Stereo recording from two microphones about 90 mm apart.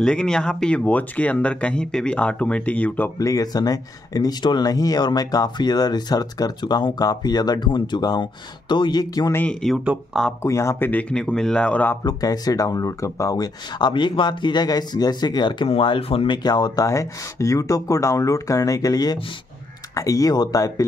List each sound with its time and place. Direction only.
0.0 s speech: 10° left (ahead or behind)
3.2 s speech: 40° left (ahead or behind)
9.5 s speech: 5° left (ahead or behind)
10.4 s speech: 30° left (ahead or behind)
10.9 s speech: 15° left (ahead or behind)
12.0 s speech: 45° left (ahead or behind)
13.7 s speech: 55° left (ahead or behind)
15.7 s speech: 85° left
16.4 s speech: 50° left (ahead or behind)
16.8 s speech: 35° left (ahead or behind)